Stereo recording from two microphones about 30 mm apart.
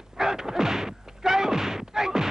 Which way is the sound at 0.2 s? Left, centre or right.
Centre.